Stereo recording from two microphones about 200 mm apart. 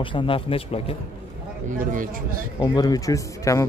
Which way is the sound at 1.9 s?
40° right (ahead or behind).